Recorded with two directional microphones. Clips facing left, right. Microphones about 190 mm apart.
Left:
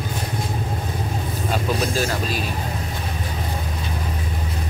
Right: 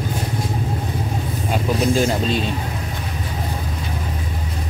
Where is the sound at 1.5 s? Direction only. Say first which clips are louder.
Right 4 dB; 20° right (ahead or behind).